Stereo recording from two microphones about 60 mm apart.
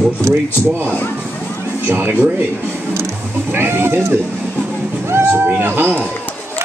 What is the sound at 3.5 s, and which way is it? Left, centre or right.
Speech, right.